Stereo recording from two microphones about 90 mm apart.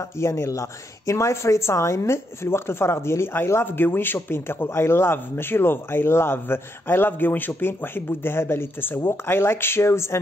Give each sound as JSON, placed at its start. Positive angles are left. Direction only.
{"t": 0.2, "sound": "a woman's voice", "side_deg": 35}